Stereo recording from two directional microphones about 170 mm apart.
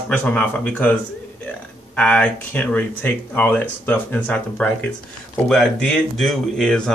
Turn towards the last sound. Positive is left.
turn(degrees=5)  # may be behind; listen again after turning